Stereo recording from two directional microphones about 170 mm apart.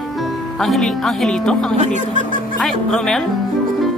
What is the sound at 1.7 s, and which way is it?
Speech, 45° right (ahead or behind).